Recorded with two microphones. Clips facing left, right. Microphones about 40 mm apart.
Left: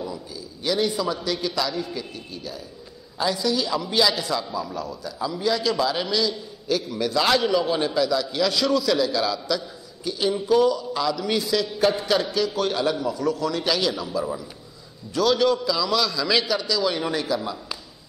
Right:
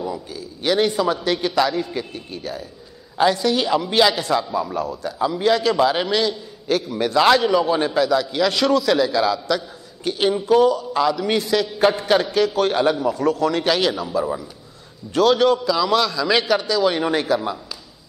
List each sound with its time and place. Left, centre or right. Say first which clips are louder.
0.3 s a man's voice: right 5 dB; right
7.4 s a man's voice: right 4 dB; centre
7.7 s a man's voice: right 4 dB; right
13.9 s a man's voice: right 4 dB; centre